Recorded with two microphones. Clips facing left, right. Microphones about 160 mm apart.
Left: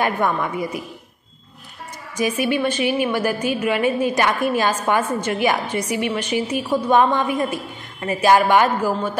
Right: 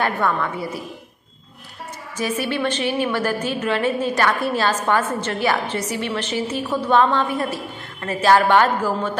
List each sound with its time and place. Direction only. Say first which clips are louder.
0.0 s a woman's voice: left 1 dB; 15° left (ahead or behind)
2.1 s a woman's voice: left 3 dB; 15° left (ahead or behind)